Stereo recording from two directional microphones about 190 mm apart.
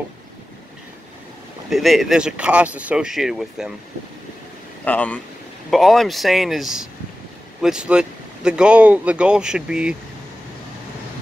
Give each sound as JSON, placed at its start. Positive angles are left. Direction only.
{"t": 1.7, "sound": "speech", "side_deg": 0}
{"t": 4.8, "sound": "speech", "side_deg": 5}